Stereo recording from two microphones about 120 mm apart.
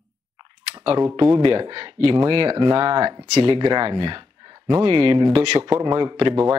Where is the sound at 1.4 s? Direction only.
35° right (ahead or behind).